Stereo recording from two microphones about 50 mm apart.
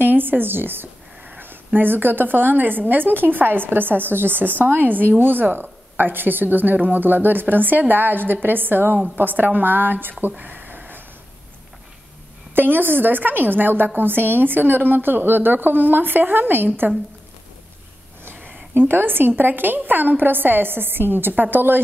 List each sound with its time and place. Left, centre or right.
0.0 s a woman's voice: right
10.3 s a sound: right
12.5 s a woman's voice: right
18.2 s a woman's voice: right